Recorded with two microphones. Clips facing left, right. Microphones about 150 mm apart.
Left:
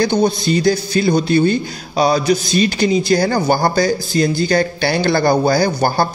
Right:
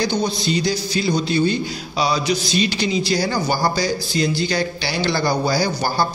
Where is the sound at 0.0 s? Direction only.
50° left (ahead or behind).